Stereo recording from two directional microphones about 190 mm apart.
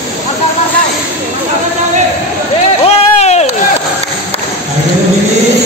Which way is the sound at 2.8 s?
35° left (ahead or behind).